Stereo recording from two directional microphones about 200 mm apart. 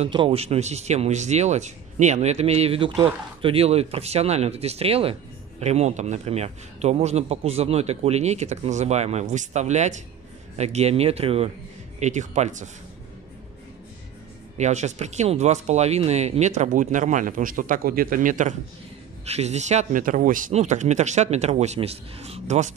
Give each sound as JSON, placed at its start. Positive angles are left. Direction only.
{"t": 0.0, "sound": "speech", "side_deg": -25}
{"t": 14.6, "sound": "speech", "side_deg": -35}